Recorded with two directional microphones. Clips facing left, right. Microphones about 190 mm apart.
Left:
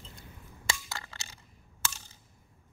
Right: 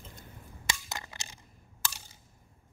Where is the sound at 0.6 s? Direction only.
20° right (ahead or behind).